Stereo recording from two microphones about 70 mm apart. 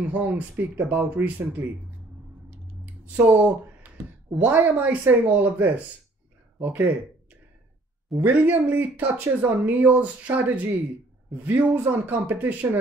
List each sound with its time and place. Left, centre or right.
0.0 s speech: right
2.8 s a sound: right
4.4 s speech: right
8.2 s speech: right